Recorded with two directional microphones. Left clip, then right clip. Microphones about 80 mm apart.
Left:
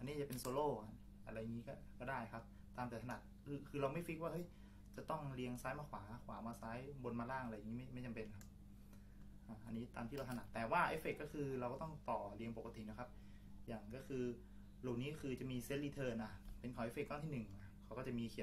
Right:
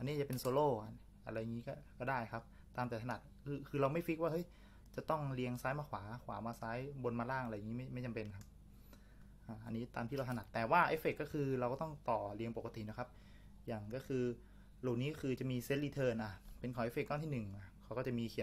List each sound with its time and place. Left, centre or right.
0.0 s speech: right
9.5 s speech: right